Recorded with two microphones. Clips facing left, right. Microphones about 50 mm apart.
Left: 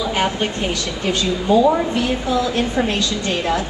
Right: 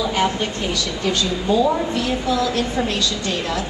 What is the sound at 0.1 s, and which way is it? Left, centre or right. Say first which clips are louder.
A woman's voice: left 1 dB; left.